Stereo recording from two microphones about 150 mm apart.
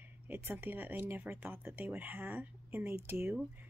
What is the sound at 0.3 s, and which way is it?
A woman's voice, 10° right (ahead or behind).